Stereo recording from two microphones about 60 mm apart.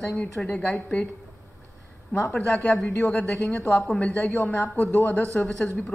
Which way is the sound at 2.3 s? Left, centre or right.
Centre.